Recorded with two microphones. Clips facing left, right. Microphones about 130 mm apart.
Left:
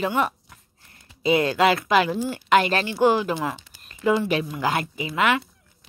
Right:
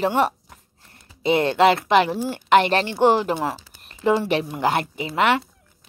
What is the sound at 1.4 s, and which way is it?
Speech, 25° right (ahead or behind).